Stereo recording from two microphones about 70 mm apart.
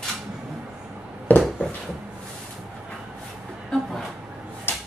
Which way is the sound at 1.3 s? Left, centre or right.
Left.